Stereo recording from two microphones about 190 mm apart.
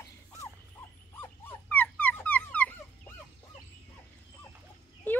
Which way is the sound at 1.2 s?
10° left (ahead or behind).